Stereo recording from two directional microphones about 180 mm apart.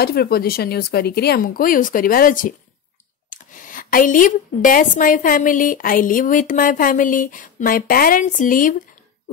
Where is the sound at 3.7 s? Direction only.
50° left (ahead or behind).